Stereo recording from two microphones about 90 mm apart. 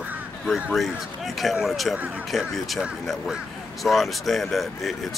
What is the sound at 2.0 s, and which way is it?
Speech, 15° right (ahead or behind).